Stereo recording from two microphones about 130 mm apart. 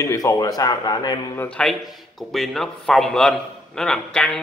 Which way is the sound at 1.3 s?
10° left (ahead or behind).